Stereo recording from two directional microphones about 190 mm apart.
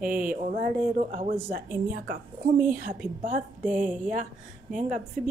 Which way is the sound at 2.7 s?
45° right (ahead or behind).